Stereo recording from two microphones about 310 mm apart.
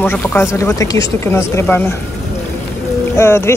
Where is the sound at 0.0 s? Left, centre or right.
Centre.